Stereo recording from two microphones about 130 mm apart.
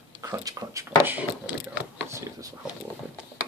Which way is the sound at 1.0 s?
15° right (ahead or behind).